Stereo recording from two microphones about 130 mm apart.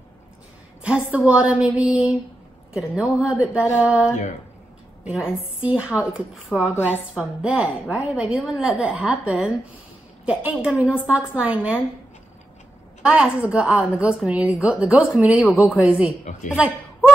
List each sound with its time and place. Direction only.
1.1 s a woman's voice: 10° right (ahead or behind)
13.0 s a woman's voice: 10° right (ahead or behind)
16.3 s a woman's voice: 70° left (ahead or behind)
16.5 s a sound: 10° right (ahead or behind)